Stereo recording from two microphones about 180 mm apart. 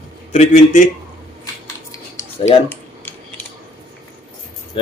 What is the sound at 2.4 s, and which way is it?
Speech, 35° left (ahead or behind).